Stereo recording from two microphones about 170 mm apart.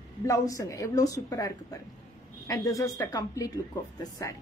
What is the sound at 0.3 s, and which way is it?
A woman's voice, 20° left (ahead or behind).